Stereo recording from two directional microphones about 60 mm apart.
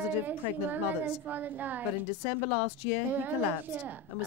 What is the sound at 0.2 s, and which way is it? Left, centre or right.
A woman's voice, right.